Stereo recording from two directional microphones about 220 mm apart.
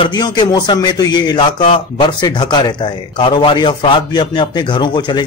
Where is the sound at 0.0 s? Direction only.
20° left (ahead or behind).